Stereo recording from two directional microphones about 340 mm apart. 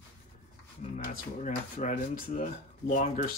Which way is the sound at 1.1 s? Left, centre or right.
Left.